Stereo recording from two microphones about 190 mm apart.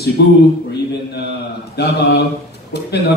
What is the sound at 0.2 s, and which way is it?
Speech, 60° left (ahead or behind).